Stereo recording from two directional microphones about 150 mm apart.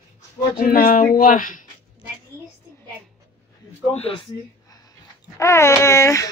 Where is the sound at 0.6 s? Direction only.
70° left (ahead or behind).